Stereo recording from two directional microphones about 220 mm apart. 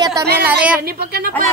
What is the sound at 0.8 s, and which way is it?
Speech, 45° right (ahead or behind).